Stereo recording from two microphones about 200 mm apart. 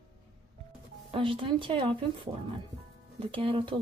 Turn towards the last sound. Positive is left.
turn(degrees=-25)  # may be behind; listen again after turning